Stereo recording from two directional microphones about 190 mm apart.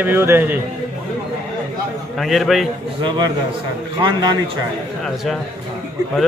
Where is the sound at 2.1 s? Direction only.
Centre (ahead or behind).